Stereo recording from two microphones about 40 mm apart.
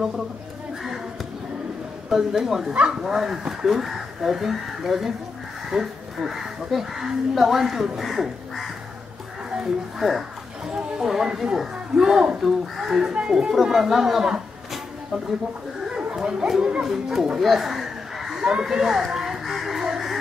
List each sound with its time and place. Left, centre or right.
2.0 s a man's voice: centre
9.9 s speech: centre
12.4 s speech: centre
13.1 s speech: right
13.5 s speech: centre
15.9 s speech: centre
18.4 s speech: centre
18.7 s music: centre